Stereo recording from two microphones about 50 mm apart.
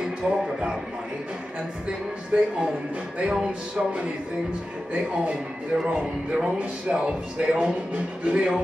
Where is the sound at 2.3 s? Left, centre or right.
Right.